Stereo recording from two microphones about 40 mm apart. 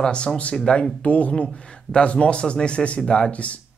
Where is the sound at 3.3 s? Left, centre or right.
Left.